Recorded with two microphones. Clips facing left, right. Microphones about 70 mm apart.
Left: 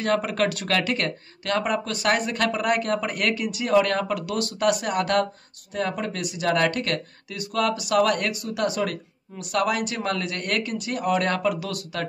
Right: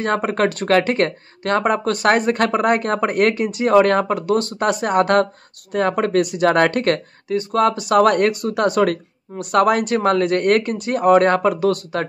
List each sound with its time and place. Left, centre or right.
0.0 s speech: right